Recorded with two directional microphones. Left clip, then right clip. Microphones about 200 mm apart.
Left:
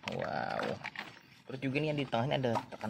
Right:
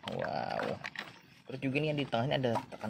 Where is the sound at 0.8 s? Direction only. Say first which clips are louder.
Even; 30° right (ahead or behind).